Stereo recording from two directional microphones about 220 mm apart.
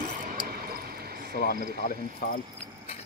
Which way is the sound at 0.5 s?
45° right (ahead or behind).